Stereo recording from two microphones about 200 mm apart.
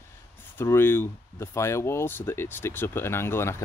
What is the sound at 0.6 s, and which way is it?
Speech, 10° left (ahead or behind).